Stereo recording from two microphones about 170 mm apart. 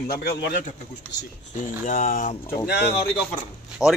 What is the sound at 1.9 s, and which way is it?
Speech, 50° left (ahead or behind).